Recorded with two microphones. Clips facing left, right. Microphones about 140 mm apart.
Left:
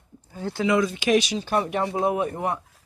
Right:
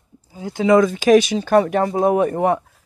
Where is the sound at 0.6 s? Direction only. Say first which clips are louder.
Right 8 dB; 45° right (ahead or behind).